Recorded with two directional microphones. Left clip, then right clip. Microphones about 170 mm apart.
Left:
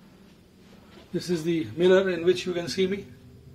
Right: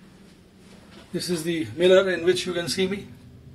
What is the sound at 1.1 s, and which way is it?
Speech, 15° left (ahead or behind).